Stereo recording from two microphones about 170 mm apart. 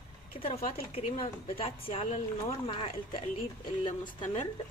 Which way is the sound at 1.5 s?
35° left (ahead or behind).